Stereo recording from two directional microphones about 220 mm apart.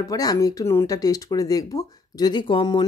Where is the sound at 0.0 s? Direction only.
15° left (ahead or behind).